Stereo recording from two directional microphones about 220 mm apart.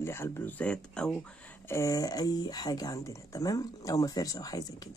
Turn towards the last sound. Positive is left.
turn(degrees=15)  # may be behind; listen again after turning